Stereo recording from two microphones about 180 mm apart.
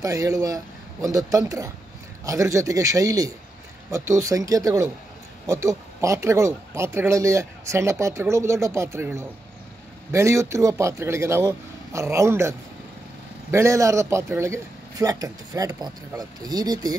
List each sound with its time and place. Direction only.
0.0 s a man's voice: 20° right (ahead or behind)